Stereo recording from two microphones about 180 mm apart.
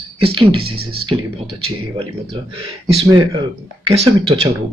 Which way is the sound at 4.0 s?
30° right (ahead or behind).